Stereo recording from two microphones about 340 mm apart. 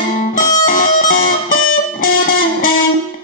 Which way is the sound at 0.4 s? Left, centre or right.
Left.